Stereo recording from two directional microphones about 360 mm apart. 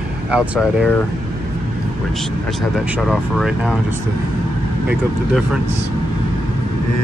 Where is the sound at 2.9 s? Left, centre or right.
Centre.